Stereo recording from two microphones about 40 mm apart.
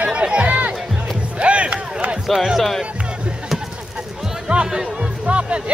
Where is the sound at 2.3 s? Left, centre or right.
Centre.